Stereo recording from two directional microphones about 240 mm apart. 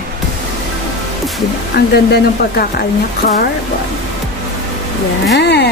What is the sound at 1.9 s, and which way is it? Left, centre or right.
Speech, left.